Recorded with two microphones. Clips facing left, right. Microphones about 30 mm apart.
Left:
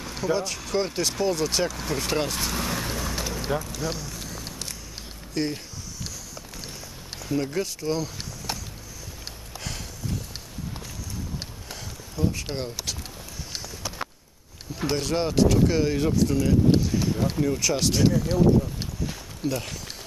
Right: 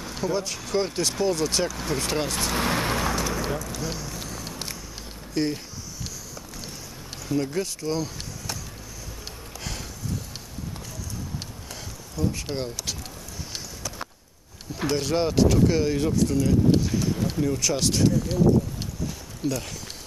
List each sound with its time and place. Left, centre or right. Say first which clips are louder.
0.0 s speech: left 1 dB; centre
2.5 s speech: right 4 dB; right
2.8 s vehicle: right 5 dB; right
3.6 s a sound: left 1 dB; centre
5.3 s speech: right 2 dB; centre
7.2 s speech: even; centre
12.3 s speech: right 2 dB; centre
13.8 s clip-clop: left 1 dB; left
15.0 s speech: right 1 dB; centre
18.0 s speech: left 2 dB; centre
19.4 s speech: even; centre